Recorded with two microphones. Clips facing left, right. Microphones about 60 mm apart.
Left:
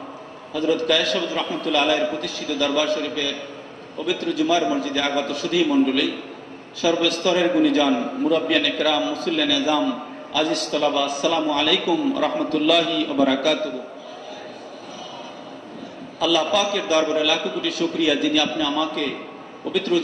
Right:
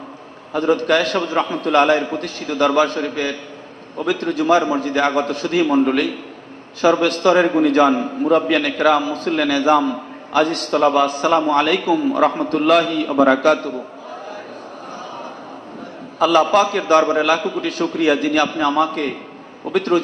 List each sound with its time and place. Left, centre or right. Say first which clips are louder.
0.5 s a man's voice: right 4 dB; right
16.2 s a man's voice: right 6 dB; right